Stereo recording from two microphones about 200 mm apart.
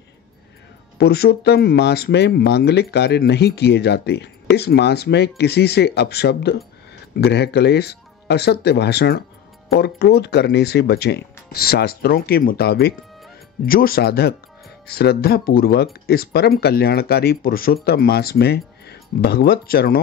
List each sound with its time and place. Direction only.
0.9 s speech: 50° left (ahead or behind)